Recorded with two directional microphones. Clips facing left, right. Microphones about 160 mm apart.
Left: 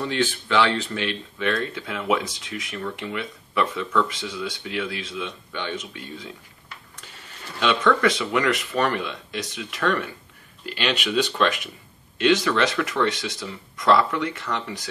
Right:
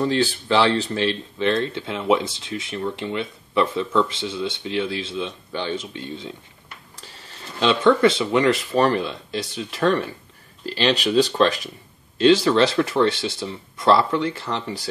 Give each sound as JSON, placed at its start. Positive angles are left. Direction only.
{"t": 0.0, "sound": "speech", "side_deg": -35}
{"t": 7.6, "sound": "speech", "side_deg": -30}